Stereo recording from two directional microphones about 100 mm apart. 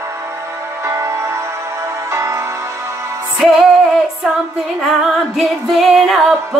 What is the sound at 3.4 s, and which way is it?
Music, 5° right (ahead or behind).